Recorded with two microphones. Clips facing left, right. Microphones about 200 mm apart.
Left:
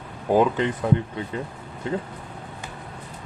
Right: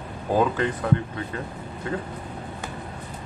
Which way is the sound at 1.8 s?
20° left (ahead or behind).